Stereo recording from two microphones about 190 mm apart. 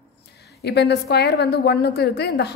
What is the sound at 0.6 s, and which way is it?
A woman's voice, 60° left (ahead or behind).